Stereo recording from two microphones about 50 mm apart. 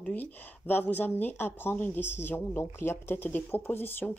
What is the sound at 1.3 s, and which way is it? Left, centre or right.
Speech, left.